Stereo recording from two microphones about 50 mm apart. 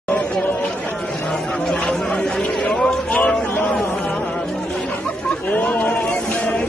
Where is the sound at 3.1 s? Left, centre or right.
Left.